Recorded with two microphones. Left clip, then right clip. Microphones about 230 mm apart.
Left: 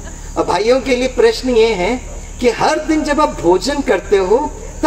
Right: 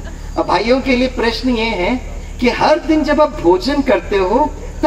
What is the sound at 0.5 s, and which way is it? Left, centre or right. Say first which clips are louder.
A man's voice: left 1 dB; left.